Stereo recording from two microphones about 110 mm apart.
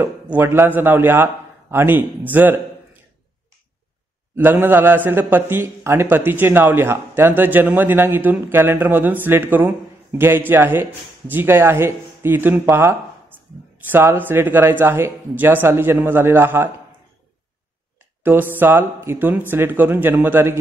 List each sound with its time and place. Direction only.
0.0 s a man's voice: 20° right (ahead or behind)
4.4 s a man's voice: 20° right (ahead or behind)
18.2 s a man's voice: 20° right (ahead or behind)